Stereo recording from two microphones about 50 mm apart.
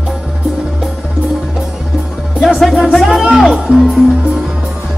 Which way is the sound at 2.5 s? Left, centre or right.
Centre.